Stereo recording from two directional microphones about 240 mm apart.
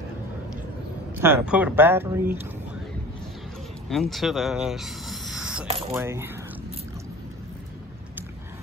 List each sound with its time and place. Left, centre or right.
1.2 s speech: centre
3.9 s speech: centre
5.7 s mechanisms: right
5.9 s speech: centre